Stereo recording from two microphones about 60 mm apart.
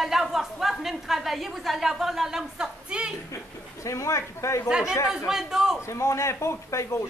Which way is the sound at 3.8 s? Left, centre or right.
Left.